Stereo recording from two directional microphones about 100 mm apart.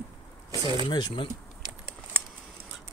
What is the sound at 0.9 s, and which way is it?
Speech, 50° left (ahead or behind).